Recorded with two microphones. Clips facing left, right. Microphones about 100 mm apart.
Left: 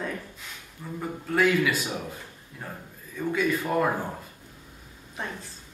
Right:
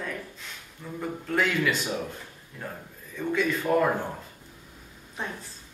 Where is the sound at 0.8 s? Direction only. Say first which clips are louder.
Even; 5° left (ahead or behind).